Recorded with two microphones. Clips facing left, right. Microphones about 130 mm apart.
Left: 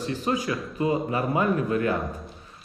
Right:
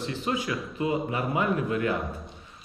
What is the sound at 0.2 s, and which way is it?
Speech, 35° left (ahead or behind).